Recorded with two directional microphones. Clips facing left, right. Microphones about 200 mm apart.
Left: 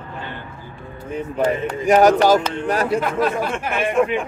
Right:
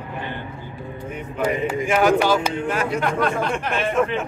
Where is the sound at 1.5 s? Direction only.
15° right (ahead or behind).